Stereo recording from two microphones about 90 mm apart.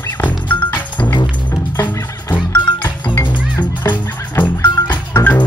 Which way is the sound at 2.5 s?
25° left (ahead or behind).